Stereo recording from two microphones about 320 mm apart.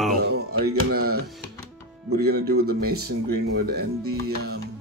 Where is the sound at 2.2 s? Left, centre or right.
Right.